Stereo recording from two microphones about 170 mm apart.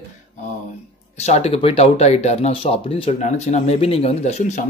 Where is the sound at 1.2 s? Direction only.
40° left (ahead or behind).